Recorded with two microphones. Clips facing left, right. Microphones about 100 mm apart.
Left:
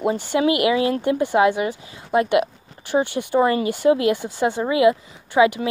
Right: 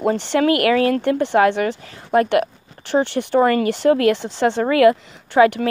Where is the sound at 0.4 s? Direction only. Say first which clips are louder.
Right 2 dB; 50° right (ahead or behind).